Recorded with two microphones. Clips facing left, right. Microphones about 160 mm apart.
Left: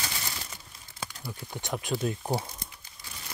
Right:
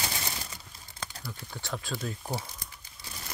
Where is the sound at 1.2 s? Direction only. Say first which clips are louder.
Left 3 dB; 20° left (ahead or behind).